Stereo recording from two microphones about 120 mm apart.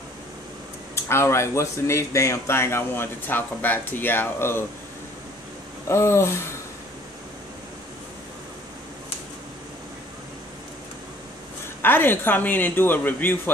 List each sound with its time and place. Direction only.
0.9 s speech: 20° left (ahead or behind)
5.9 s speech: 20° left (ahead or behind)
11.8 s speech: 15° left (ahead or behind)